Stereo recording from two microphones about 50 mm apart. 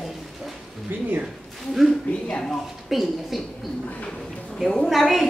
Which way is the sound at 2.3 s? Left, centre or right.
Centre.